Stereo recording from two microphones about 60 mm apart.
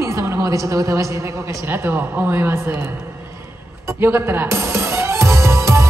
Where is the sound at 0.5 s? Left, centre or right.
Right.